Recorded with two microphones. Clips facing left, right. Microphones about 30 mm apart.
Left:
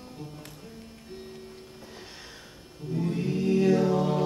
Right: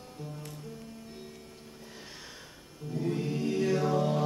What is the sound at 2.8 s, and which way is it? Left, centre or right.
Music, left.